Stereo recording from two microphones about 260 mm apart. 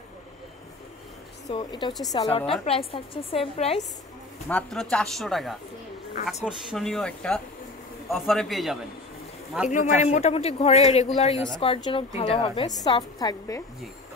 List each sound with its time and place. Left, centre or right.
1.5 s a man's voice: centre
4.5 s a man's voice: centre
9.7 s a man's voice: left